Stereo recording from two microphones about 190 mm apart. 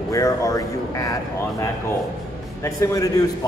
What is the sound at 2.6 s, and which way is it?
Speech, 15° left (ahead or behind).